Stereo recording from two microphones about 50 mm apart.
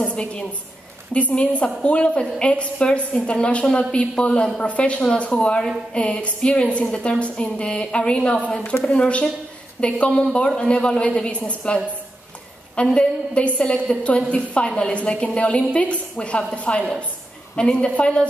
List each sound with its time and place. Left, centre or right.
0.0 s a woman's voice: left